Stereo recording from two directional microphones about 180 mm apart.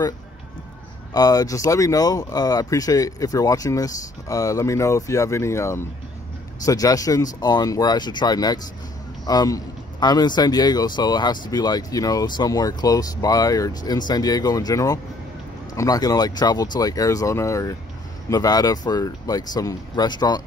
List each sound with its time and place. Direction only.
1.1 s speech: 20° left (ahead or behind)